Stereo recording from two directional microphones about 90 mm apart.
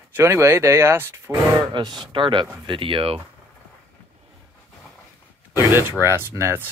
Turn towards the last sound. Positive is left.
turn(degrees=-25)  # may be behind; listen again after turning